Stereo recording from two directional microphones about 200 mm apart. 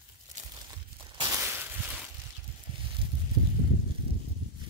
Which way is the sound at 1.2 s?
15° right (ahead or behind).